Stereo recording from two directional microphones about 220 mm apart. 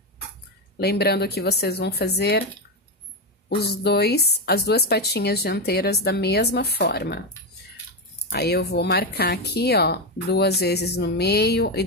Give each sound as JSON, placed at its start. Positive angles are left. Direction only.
{"t": 0.7, "sound": "speech", "side_deg": 45}
{"t": 3.4, "sound": "speech", "side_deg": 50}
{"t": 8.3, "sound": "speech", "side_deg": 45}